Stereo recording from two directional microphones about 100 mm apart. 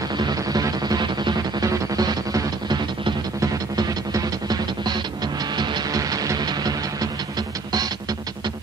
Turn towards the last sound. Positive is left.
turn(degrees=-40)  # may be behind; listen again after turning